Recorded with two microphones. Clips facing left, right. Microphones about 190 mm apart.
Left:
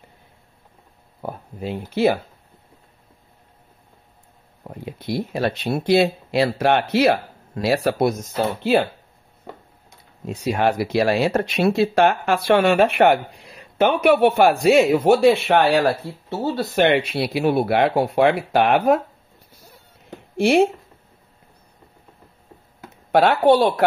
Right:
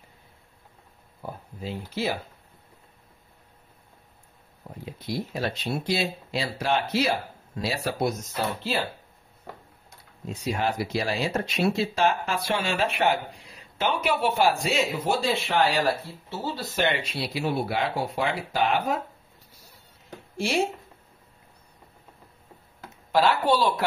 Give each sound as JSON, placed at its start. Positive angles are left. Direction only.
{"t": 1.2, "sound": "speech", "side_deg": 60}
{"t": 4.6, "sound": "speech", "side_deg": 65}
{"t": 10.2, "sound": "speech", "side_deg": 65}
{"t": 20.3, "sound": "speech", "side_deg": 60}
{"t": 23.1, "sound": "speech", "side_deg": 60}